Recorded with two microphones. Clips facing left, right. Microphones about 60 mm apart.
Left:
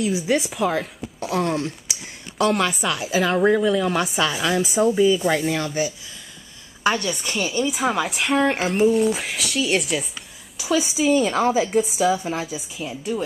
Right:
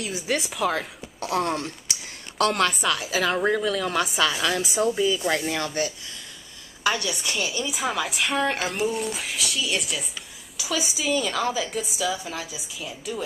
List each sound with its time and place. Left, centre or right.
0.4 s speech: centre
6.8 s a woman's voice: left
7.6 s speech: centre
10.7 s a woman's voice: left
11.2 s speech: centre
11.7 s a woman's voice: left
12.4 s speech: centre